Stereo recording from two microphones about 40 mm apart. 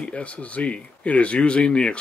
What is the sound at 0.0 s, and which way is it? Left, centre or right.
Speech, left.